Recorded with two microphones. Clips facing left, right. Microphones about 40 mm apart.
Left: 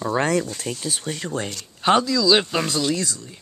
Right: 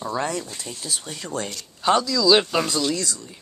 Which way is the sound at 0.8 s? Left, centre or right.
Left.